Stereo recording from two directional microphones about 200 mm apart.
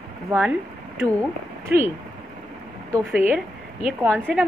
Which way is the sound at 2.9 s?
10° right (ahead or behind).